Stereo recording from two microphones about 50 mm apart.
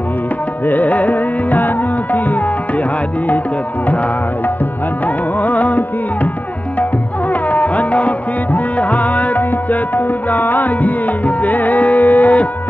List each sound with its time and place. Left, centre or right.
0.7 s music: left
5.0 s music: left
7.4 s music: left